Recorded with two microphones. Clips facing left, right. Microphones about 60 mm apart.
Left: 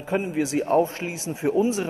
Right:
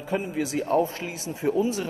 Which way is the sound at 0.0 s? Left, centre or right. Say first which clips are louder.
Left 3 dB; left.